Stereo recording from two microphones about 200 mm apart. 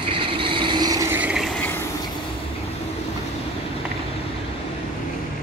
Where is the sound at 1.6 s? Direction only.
10° left (ahead or behind).